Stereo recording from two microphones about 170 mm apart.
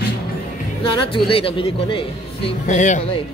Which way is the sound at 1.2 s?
30° left (ahead or behind).